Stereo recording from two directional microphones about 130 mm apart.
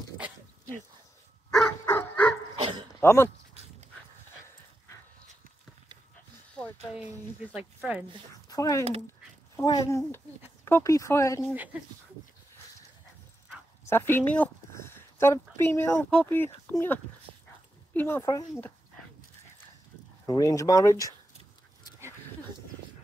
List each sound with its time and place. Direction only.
1.9 s dog: 15° left (ahead or behind)
2.5 s dog: 40° right (ahead or behind)
3.0 s speech: 20° left (ahead or behind)
7.0 s speech: 10° right (ahead or behind)
8.5 s speech: 25° left (ahead or behind)
13.8 s speech: 20° left (ahead or behind)
14.7 s a sound: 20° left (ahead or behind)
16.0 s speech: 10° left (ahead or behind)
18.2 s speech: 30° left (ahead or behind)
20.2 s speech: 25° left (ahead or behind)